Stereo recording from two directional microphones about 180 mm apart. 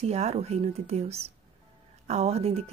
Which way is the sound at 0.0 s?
35° right (ahead or behind).